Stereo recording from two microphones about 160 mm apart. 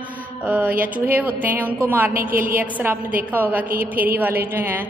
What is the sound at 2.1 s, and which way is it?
Speech, 60° right (ahead or behind).